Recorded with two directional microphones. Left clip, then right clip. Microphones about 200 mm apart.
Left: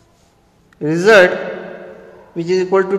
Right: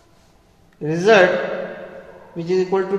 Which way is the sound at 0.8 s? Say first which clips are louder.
Left 4 dB; 45° left (ahead or behind).